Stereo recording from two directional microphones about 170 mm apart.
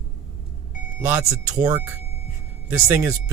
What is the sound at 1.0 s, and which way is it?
Speech, 10° right (ahead or behind).